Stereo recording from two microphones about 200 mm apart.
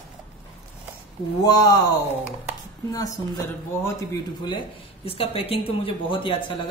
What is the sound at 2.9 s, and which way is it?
A woman's voice, 20° left (ahead or behind).